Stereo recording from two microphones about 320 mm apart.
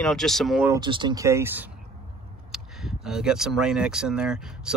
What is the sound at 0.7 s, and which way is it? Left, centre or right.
Speech, centre.